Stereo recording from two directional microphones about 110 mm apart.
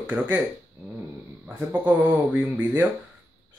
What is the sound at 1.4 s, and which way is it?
Speech, 15° right (ahead or behind).